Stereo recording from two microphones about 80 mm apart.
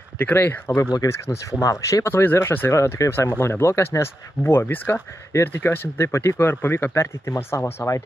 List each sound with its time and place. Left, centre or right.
0.2 s speech: left